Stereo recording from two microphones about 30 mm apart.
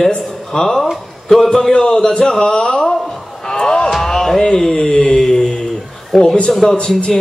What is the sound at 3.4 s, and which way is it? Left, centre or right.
Music, left.